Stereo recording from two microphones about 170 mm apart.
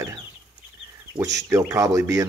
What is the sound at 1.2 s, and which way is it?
Speech, 20° right (ahead or behind).